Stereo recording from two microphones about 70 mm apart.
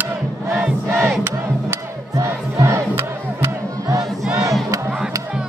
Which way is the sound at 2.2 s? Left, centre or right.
Right.